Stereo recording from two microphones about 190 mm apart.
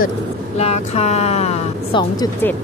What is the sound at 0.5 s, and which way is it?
A woman's voice, 35° left (ahead or behind).